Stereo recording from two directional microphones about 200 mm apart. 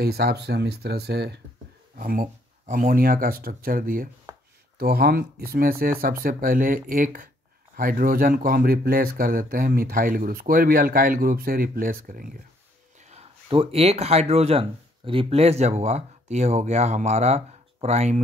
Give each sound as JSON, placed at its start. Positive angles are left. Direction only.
{"t": 0.0, "sound": "speech", "side_deg": -50}
{"t": 2.0, "sound": "speech", "side_deg": -45}
{"t": 13.1, "sound": "speech", "side_deg": -30}